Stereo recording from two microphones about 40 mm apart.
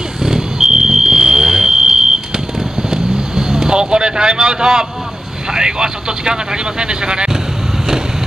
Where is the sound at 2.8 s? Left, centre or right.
Centre.